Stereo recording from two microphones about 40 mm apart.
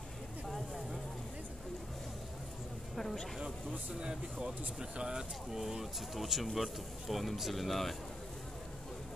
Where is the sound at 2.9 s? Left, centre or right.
Centre.